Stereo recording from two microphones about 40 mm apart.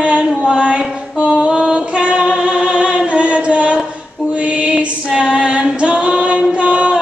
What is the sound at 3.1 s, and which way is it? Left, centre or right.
Chant, right.